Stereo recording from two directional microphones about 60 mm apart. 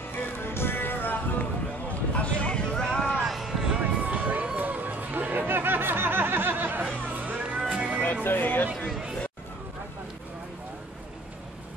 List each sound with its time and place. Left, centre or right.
0.4 s music: left; by 3.1 s centre
3.2 s vehicle: centre
4.6 s music: right
6.8 s music: centre
8.1 s music: left
8.7 s chatter: centre